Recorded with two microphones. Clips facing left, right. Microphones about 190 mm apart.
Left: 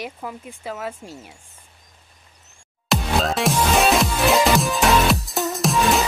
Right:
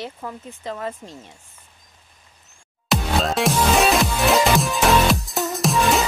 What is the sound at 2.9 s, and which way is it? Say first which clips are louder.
Music: even; centre (ahead or behind).